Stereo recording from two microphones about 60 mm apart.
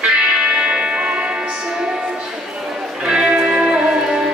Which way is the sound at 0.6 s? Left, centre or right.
Centre.